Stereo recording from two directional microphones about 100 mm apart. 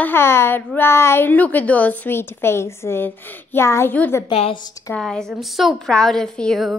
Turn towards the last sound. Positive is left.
turn(degrees=0)  # may be behind; listen again after turning